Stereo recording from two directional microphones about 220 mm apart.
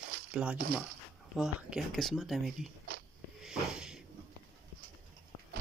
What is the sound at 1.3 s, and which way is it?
Speech, centre (ahead or behind).